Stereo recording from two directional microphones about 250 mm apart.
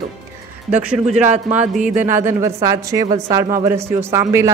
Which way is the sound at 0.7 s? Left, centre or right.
Centre.